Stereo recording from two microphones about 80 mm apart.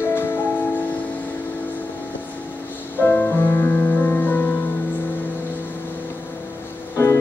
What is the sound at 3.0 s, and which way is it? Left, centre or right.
Music, left.